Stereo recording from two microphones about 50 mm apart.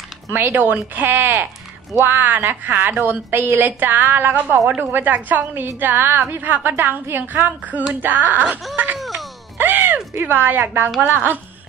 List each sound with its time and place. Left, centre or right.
0.3 s a woman's voice: right
5.5 s a woman's voice: right
5.8 s a woman's voice: right
8.9 s a sound: centre
9.6 s a sound: right
10.1 s speech: right